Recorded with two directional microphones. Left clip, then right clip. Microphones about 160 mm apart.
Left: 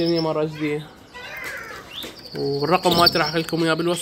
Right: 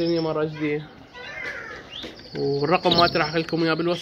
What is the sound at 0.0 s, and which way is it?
Speech, 25° left (ahead or behind).